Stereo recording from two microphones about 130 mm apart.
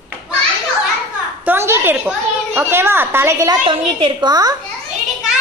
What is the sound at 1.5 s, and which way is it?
A woman's voice, 20° right (ahead or behind).